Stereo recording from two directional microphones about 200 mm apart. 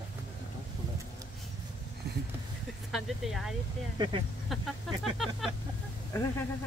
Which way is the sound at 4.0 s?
25° right (ahead or behind).